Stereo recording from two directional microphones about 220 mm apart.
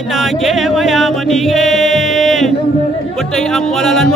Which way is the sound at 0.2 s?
Centre (ahead or behind).